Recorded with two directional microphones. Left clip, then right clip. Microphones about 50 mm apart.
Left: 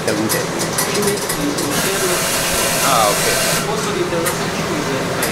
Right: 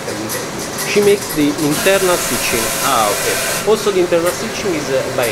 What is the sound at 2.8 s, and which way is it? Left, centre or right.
Speech, centre.